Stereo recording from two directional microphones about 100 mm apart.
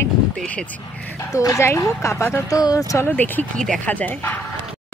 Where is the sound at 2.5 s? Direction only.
35° left (ahead or behind).